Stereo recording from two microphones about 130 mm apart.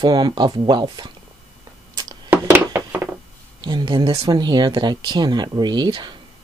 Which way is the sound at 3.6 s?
35° right (ahead or behind).